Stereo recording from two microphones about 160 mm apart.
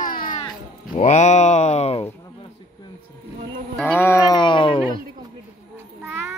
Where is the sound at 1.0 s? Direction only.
45° left (ahead or behind).